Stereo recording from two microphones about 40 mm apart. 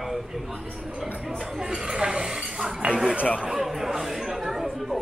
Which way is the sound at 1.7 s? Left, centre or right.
Centre.